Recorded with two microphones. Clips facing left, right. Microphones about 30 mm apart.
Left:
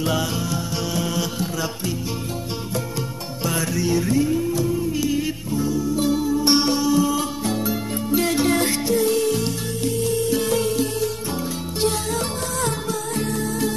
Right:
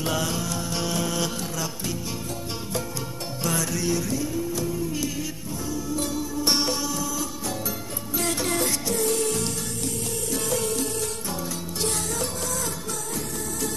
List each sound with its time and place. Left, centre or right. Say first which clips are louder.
0.0 s music: left 3 dB; centre
3.5 s music: left 5 dB; centre
4.0 s music: left 8 dB; left
4.6 s music: left 5 dB; centre
7.1 s music: left 7 dB; left
7.6 s music: left 8 dB; centre
8.5 s music: left 5 dB; left
8.9 s music: left 7 dB; centre
10.3 s music: left 6 dB; left